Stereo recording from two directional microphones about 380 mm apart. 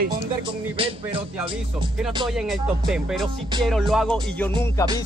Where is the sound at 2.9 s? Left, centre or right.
Centre.